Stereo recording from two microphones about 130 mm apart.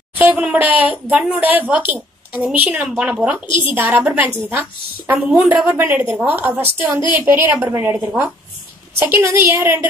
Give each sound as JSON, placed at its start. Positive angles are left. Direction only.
{"t": 0.1, "sound": "a woman's voice", "side_deg": -15}